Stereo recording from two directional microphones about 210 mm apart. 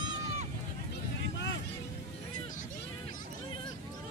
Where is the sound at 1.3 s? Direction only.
60° left (ahead or behind).